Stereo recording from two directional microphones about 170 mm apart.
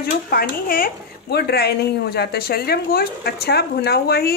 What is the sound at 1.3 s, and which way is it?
A woman's voice, 70° left (ahead or behind).